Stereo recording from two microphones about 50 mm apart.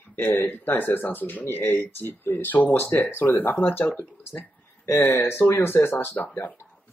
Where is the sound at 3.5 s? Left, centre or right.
Left.